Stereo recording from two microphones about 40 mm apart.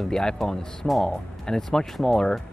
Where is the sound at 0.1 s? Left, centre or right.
Centre.